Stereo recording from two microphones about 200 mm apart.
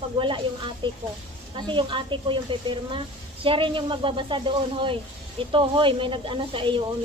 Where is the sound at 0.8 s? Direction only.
25° right (ahead or behind).